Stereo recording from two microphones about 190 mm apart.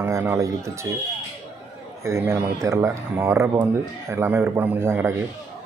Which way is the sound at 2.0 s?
15° right (ahead or behind).